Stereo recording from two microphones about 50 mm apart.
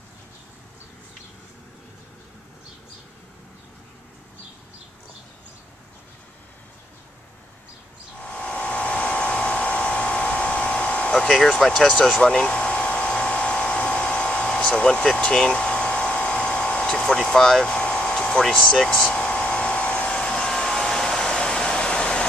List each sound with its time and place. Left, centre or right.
8.2 s hair dryer: left
11.1 s speech: centre
12.2 s a sound: centre
14.9 s speech: centre
15.3 s a sound: centre
17.6 s air conditioning: left
18.4 s hair dryer: centre; by 20.2 s left
20.2 s hair dryer: centre